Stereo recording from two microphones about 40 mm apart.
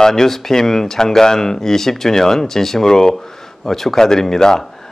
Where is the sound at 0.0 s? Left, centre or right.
Centre.